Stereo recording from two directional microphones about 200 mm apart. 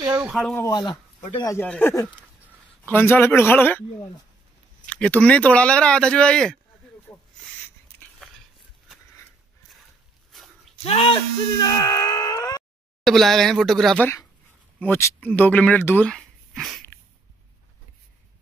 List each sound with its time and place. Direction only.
0.2 s speech: centre (ahead or behind)
0.7 s speech: 20° left (ahead or behind)
4.8 s speech: 5° left (ahead or behind)
7.1 s a sound: 5° left (ahead or behind)
10.3 s a sound: centre (ahead or behind)
10.8 s speech: 30° left (ahead or behind)
11.6 s groan: 20° left (ahead or behind)
13.0 s speech: centre (ahead or behind)